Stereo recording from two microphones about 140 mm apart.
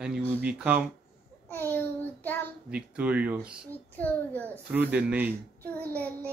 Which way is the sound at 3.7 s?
10° left (ahead or behind).